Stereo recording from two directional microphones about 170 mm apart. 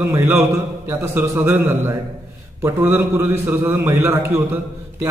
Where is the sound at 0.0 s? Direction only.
15° right (ahead or behind).